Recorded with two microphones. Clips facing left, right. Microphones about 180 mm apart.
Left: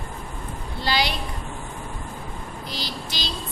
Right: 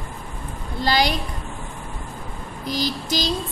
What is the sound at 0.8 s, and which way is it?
Speech, 45° right (ahead or behind).